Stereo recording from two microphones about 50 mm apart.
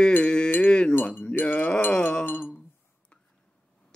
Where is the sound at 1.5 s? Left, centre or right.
Left.